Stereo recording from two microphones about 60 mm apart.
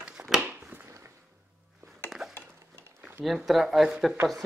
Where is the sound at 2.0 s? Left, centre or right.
Centre.